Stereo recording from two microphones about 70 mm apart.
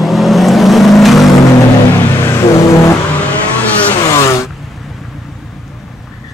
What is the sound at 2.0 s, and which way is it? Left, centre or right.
Vehicle, left.